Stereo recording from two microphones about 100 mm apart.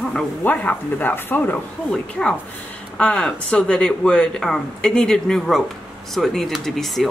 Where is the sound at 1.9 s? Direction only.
10° left (ahead or behind).